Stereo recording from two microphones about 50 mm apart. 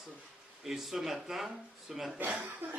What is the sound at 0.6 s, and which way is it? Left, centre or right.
A man's voice, centre.